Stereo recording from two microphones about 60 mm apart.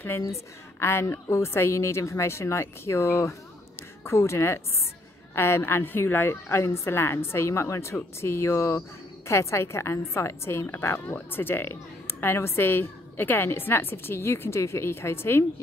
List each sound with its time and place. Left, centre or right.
0.7 s a woman's voice: left
11.1 s a woman's voice: left